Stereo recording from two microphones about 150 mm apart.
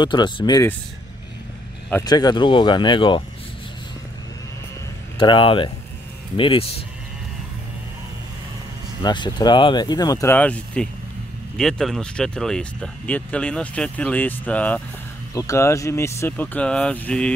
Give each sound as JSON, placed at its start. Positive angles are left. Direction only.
{"t": 0.0, "sound": "speech", "side_deg": 30}
{"t": 2.0, "sound": "speech", "side_deg": 25}
{"t": 5.2, "sound": "speech", "side_deg": 35}
{"t": 9.0, "sound": "speech", "side_deg": 30}
{"t": 10.3, "sound": "speech", "side_deg": 10}
{"t": 15.3, "sound": "speech", "side_deg": 20}